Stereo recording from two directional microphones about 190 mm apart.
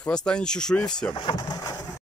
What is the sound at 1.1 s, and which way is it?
Vehicle, 25° left (ahead or behind).